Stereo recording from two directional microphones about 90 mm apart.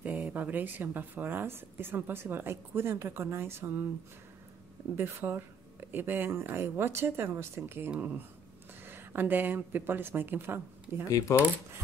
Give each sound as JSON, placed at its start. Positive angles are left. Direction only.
{"t": 0.0, "sound": "speech", "side_deg": -20}
{"t": 4.9, "sound": "speech", "side_deg": -25}
{"t": 11.1, "sound": "speech", "side_deg": 40}